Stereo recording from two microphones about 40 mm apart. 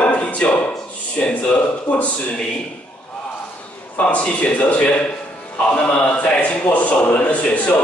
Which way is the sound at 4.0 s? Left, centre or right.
Left.